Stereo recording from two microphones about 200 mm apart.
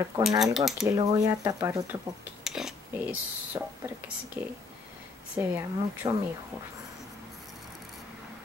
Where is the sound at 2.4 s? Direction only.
Centre (ahead or behind).